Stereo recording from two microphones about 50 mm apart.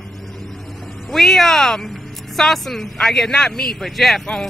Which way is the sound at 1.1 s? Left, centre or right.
Centre.